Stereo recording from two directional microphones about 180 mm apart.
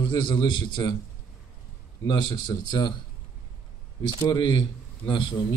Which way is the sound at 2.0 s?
25° left (ahead or behind).